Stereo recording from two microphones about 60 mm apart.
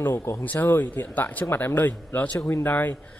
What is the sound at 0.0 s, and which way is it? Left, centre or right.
Speech, left.